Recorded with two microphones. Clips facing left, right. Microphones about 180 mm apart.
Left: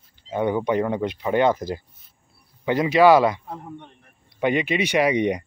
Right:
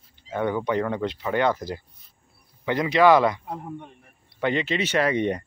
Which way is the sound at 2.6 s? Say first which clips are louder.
Left 2 dB; 20° left (ahead or behind).